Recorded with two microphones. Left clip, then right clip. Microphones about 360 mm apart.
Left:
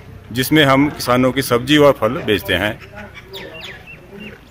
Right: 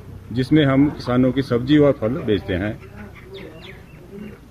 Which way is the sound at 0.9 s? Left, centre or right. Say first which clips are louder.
Left 5 dB; centre.